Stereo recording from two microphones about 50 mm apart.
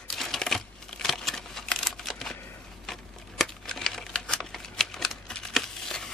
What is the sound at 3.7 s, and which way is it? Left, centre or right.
Crumpling, centre.